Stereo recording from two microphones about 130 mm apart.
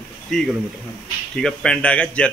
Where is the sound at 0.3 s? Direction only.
5° left (ahead or behind).